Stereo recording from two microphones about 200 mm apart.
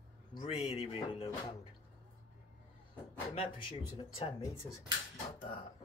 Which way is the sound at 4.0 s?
30° left (ahead or behind).